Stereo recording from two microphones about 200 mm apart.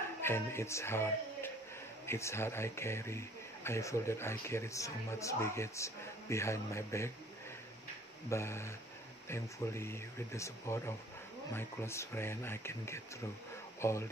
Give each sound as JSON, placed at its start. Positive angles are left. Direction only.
{"t": 0.2, "sound": "speech", "side_deg": 10}
{"t": 8.3, "sound": "speech", "side_deg": 15}